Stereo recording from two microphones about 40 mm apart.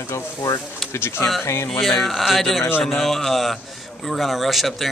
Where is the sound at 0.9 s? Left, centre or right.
Left.